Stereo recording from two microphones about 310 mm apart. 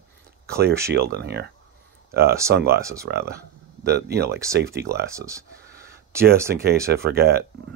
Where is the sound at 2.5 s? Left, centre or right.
Right.